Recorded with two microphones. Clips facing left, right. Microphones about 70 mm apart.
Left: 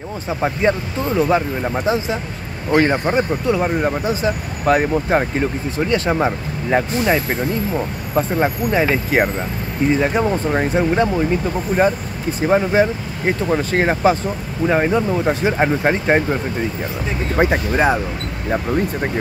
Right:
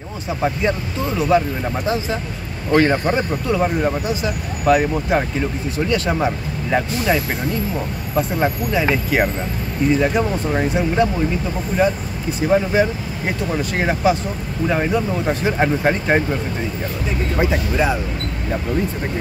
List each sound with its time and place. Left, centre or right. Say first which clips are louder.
0.4 s speech: left 2 dB; left
8.2 s speech: left 2 dB; left
12.4 s speech: left 1 dB; left
14.7 s speech: left 3 dB; left
17.4 s speech: left 3 dB; left